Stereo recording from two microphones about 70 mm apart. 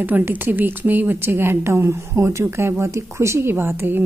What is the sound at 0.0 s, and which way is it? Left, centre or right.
A woman's voice, right.